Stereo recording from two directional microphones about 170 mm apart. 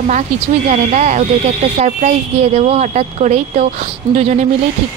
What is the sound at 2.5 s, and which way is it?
A woman's voice, 40° right (ahead or behind).